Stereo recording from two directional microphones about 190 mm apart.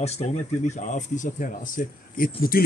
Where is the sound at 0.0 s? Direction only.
35° left (ahead or behind).